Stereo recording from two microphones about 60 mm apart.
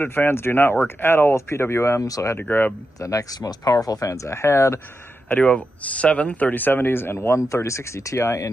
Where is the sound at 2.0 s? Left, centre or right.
Left.